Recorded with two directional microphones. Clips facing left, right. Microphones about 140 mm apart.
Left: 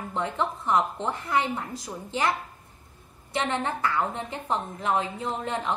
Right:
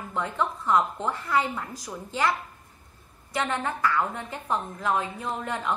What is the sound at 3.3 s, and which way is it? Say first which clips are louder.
A woman's voice: left 1 dB; 25° left (ahead or behind).